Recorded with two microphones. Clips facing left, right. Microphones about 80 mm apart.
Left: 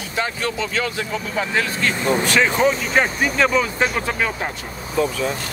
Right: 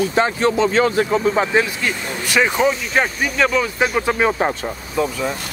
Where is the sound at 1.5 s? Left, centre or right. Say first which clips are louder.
Right 3 dB; centre.